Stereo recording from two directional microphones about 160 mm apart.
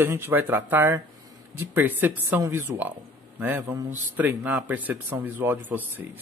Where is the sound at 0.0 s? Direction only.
15° right (ahead or behind).